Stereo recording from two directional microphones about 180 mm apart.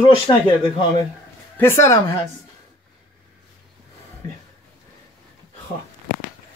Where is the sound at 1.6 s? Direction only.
15° left (ahead or behind).